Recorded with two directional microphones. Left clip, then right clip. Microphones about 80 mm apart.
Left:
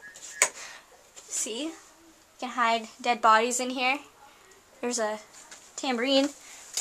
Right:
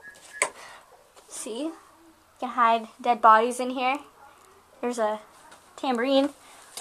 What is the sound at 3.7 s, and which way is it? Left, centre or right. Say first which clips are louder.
A woman's voice: right 1 dB; centre.